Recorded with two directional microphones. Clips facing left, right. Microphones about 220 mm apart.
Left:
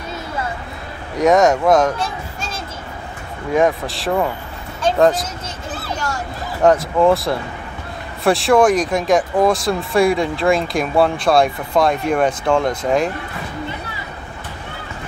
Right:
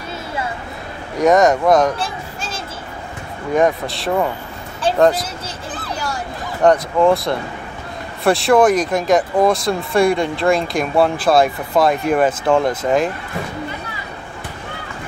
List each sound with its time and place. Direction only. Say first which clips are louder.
1.1 s speech: even; centre (ahead or behind)
2.0 s a sound: left 1 dB; 30° right (ahead or behind)
3.5 s speech: even; centre (ahead or behind)
6.6 s speech: even; centre (ahead or behind)